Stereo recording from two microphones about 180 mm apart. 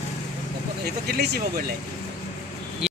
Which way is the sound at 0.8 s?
60° right (ahead or behind).